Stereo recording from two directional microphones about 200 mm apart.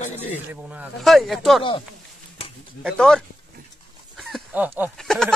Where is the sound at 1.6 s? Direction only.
25° left (ahead or behind).